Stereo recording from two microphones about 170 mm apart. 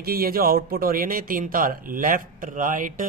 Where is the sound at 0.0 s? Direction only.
60° right (ahead or behind).